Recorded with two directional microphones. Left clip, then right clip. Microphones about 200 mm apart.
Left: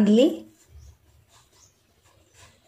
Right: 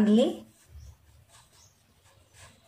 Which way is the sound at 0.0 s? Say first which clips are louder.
Left 5 dB; 35° left (ahead or behind).